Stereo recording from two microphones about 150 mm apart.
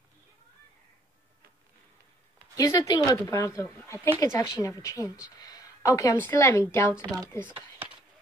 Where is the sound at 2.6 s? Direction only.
25° left (ahead or behind).